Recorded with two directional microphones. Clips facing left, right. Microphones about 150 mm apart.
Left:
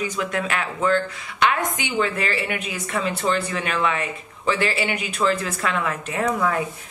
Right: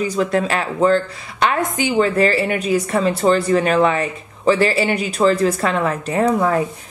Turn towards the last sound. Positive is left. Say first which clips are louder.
# right 6 dB
turn(degrees=-35)  # may be behind; listen again after turning